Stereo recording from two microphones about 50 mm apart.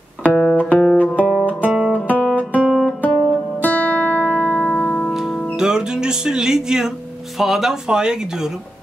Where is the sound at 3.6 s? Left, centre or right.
Left.